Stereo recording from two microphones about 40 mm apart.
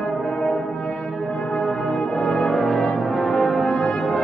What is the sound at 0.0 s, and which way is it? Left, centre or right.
Brass instrument, centre.